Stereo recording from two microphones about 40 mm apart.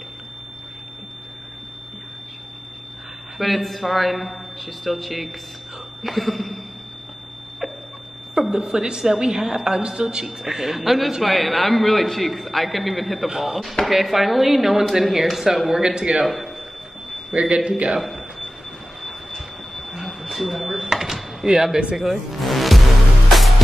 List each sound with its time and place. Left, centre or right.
3.3 s a man's voice: centre
8.4 s a woman's voice: centre
10.2 s a woman's voice: centre
15.7 s speech: centre
17.3 s a man's voice: right
17.9 s a sound: centre
22.0 s speech: centre
23.2 s music: centre